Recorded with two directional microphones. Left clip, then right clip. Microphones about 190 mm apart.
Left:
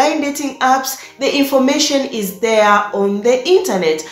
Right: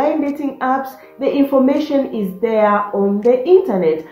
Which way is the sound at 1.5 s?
20° left (ahead or behind).